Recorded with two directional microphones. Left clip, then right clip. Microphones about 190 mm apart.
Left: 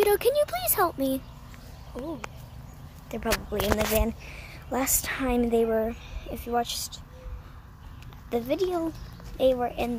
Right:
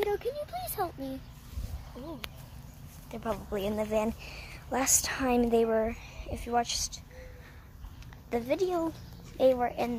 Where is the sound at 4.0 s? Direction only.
5° left (ahead or behind).